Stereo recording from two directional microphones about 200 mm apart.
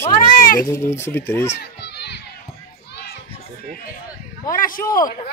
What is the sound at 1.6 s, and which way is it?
Children playing, 55° left (ahead or behind).